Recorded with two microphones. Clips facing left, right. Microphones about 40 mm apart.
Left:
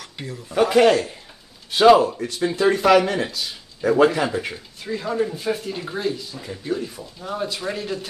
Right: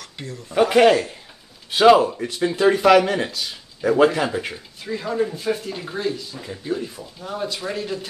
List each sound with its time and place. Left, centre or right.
0.0 s speech: centre
0.7 s speech: right
1.8 s speech: centre